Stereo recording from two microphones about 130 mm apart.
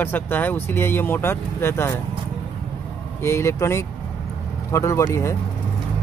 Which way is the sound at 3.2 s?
20° left (ahead or behind).